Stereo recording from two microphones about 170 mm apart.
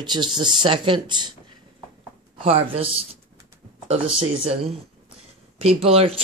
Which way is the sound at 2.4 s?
35° right (ahead or behind).